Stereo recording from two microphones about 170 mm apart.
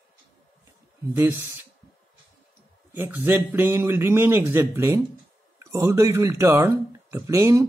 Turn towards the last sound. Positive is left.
turn(degrees=-20)  # may be behind; listen again after turning